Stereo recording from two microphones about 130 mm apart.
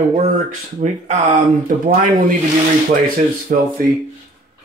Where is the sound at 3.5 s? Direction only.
90° right.